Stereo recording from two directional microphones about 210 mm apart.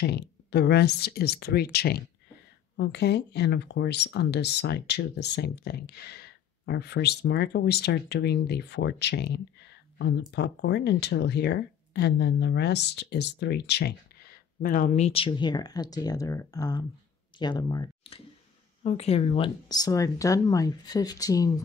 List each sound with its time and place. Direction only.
0.0 s speech: 55° left (ahead or behind); by 18.2 s 20° left (ahead or behind)
18.9 s speech: 30° left (ahead or behind)